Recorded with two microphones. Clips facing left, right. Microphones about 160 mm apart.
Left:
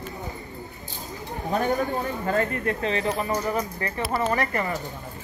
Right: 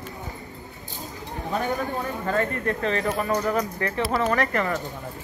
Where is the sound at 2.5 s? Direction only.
40° right (ahead or behind).